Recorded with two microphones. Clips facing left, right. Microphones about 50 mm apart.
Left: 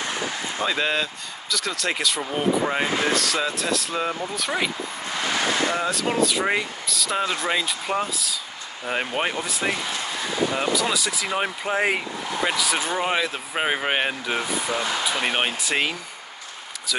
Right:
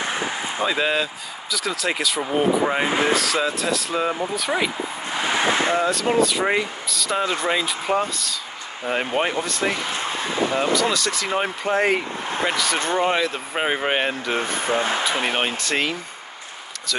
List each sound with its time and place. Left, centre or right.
0.0 s a sound: right
0.7 s speech: centre
5.0 s vehicle: centre
5.8 s speech: centre
14.6 s speech: right
15.2 s speech: centre